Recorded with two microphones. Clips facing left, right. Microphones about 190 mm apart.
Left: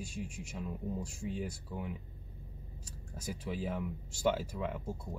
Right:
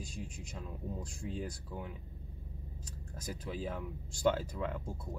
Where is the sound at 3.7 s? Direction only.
5° left (ahead or behind).